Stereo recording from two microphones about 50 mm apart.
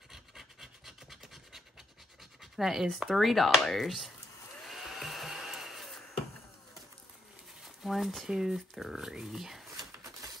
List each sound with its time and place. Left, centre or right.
0.1 s rub: centre
2.4 s speech: centre
4.6 s a sound: centre
7.6 s speech: centre
8.3 s speech: centre